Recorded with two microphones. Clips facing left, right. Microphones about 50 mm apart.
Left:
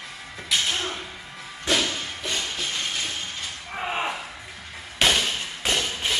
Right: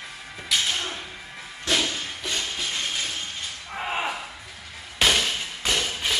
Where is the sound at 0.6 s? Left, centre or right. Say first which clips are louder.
Left 1 dB; centre.